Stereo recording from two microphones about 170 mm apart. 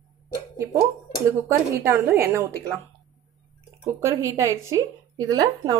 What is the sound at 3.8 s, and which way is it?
Speech, 20° right (ahead or behind).